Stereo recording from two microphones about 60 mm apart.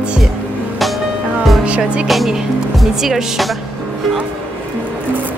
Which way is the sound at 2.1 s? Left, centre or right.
Centre.